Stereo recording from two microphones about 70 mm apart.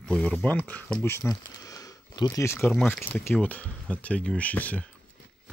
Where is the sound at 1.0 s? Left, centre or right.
Left.